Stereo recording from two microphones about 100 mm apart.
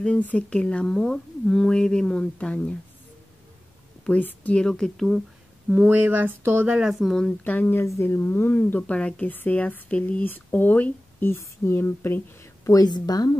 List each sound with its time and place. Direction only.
0.0 s speech: 10° left (ahead or behind)
4.0 s speech: 15° left (ahead or behind)
5.7 s speech: 15° right (ahead or behind)
6.9 s speech: centre (ahead or behind)
7.4 s speech: 20° left (ahead or behind)
12.6 s a woman's voice: 40° left (ahead or behind)